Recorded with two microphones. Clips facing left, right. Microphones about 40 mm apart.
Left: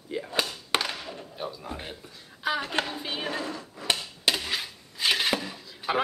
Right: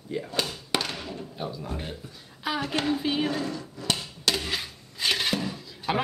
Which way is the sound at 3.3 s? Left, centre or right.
Centre.